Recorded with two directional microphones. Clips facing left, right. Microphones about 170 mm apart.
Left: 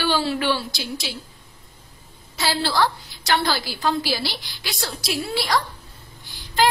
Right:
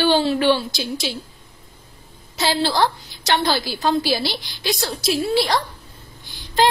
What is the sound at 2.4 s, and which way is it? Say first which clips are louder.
A woman's voice: right 3 dB; 20° right (ahead or behind).